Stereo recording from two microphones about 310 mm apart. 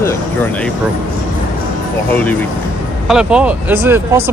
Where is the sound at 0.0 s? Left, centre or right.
Centre.